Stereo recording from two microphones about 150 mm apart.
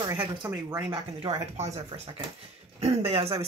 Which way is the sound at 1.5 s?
45° right (ahead or behind).